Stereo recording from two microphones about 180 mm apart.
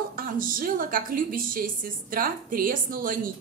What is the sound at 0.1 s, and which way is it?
A woman's voice, 50° right (ahead or behind).